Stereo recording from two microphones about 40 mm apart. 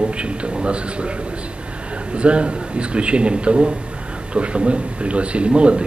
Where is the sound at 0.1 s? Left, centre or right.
Right.